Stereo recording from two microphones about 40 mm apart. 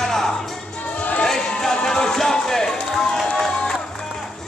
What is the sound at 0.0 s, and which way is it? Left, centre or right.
Music, centre.